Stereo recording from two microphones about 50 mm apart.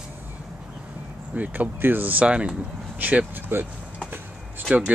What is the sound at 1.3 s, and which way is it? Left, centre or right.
Speech, right.